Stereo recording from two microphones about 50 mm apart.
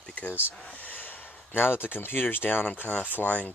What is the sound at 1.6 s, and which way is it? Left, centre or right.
Speech, left.